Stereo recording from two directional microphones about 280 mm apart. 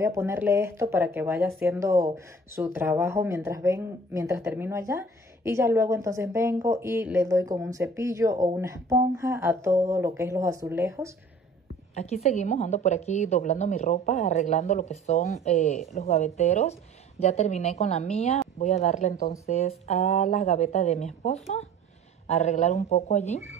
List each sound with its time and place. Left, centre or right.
0.0 s speech: centre
11.9 s a woman's voice: left